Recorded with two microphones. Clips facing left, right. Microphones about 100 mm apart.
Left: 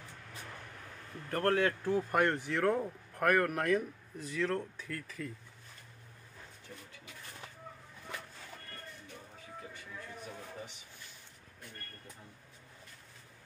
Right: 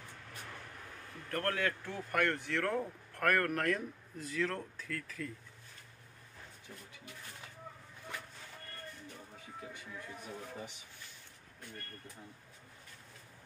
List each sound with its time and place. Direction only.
1.3 s speech: 25° left (ahead or behind); by 5.3 s 5° left (ahead or behind)